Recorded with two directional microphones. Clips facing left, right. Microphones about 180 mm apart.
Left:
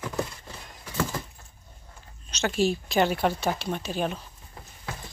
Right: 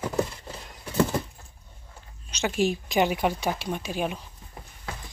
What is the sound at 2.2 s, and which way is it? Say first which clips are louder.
Speech: even; 10° right (ahead or behind).